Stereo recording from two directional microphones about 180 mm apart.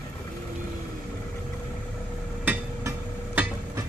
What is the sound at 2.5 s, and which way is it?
Hammer, 10° right (ahead or behind).